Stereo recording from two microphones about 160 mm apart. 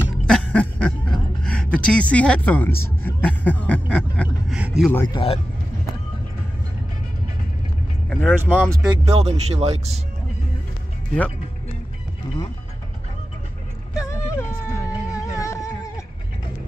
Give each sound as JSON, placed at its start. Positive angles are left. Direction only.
{"t": 0.3, "sound": "a sound", "side_deg": 5}
{"t": 4.6, "sound": "speech", "side_deg": -5}
{"t": 5.0, "sound": "speech", "side_deg": 35}
{"t": 8.1, "sound": "speech", "side_deg": 10}
{"t": 9.0, "sound": "speech", "side_deg": -40}
{"t": 13.9, "sound": "music", "side_deg": 20}